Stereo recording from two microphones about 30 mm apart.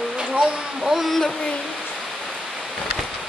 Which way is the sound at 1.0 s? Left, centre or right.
Centre.